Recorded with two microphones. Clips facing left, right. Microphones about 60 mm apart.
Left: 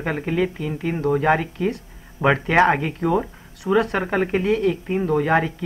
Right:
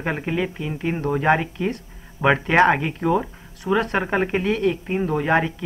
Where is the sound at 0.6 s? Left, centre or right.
Right.